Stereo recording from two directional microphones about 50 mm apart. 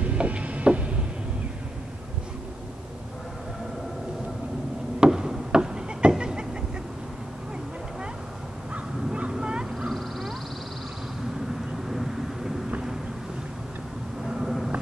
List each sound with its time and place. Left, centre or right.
0.0 s a sound: right
5.0 s a sound: centre
9.3 s fowl: centre
9.8 s crow: centre
11.9 s vehicle: centre
14.2 s vehicle: centre